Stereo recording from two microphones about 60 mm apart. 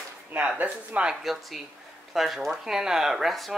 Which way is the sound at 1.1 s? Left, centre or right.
Centre.